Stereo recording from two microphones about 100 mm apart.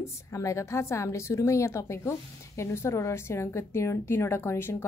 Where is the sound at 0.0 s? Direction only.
30° left (ahead or behind).